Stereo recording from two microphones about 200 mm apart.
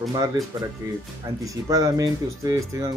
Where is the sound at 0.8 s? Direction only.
15° right (ahead or behind).